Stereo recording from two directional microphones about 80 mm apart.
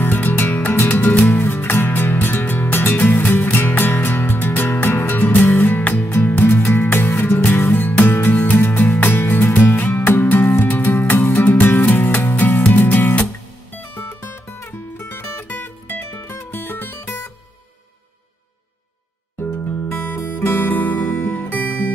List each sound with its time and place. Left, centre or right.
0.0 s music: left
19.4 s music: left